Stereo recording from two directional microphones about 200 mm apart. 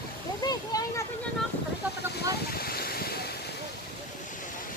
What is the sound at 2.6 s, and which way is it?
Waves, 50° left (ahead or behind).